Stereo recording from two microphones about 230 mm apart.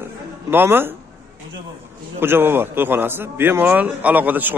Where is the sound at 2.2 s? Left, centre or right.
Centre.